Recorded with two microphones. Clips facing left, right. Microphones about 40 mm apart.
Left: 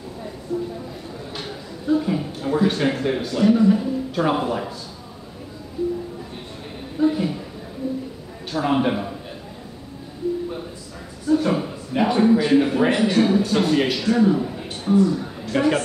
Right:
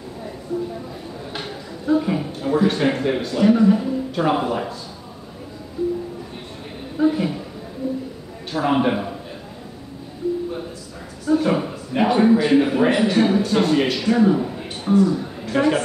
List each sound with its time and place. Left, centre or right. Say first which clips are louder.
1.3 s speech: right 2 dB; centre
7.0 s speech: right 1 dB; centre
8.5 s speech: right 1 dB; centre
11.3 s a man's voice: right 1 dB; centre